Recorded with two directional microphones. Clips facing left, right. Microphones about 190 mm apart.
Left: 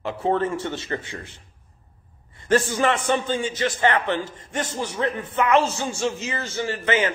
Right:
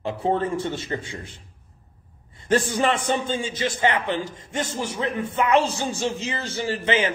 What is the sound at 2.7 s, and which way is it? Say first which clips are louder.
A man's voice: left 1 dB; 20° right (ahead or behind).